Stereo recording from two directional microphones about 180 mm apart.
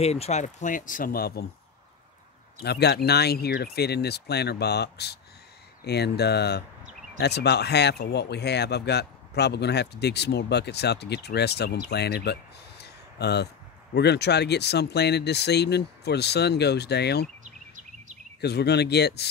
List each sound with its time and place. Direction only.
0.0 s speech: 35° left (ahead or behind); by 1.4 s 55° left (ahead or behind)
2.6 s speech: 65° left (ahead or behind)
17.4 s a sound: 45° right (ahead or behind)
18.4 s speech: 65° left (ahead or behind)